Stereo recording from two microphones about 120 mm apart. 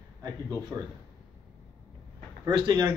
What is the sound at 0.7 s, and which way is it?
Speech, 15° right (ahead or behind).